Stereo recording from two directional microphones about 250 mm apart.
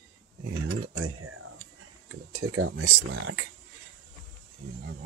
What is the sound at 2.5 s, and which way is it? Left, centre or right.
Speech, right.